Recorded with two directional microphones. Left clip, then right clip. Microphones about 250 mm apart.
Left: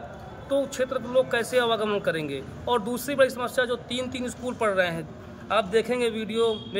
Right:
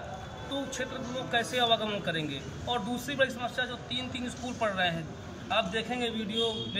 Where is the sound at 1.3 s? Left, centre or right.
Centre.